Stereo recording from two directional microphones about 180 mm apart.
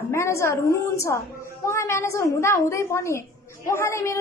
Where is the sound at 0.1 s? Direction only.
15° left (ahead or behind).